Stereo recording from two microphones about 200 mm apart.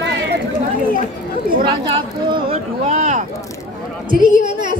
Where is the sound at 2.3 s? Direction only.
30° right (ahead or behind).